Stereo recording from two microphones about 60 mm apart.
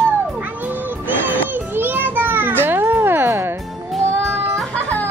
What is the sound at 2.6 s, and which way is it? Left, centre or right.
Music, right.